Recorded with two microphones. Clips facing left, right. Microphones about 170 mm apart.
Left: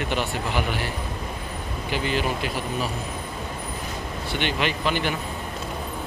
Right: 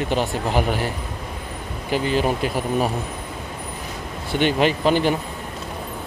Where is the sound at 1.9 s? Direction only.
40° right (ahead or behind).